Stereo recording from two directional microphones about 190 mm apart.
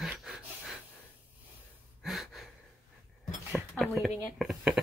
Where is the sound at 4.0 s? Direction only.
Centre (ahead or behind).